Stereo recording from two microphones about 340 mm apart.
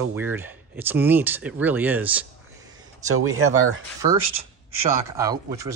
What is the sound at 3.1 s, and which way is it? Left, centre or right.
Speech, right.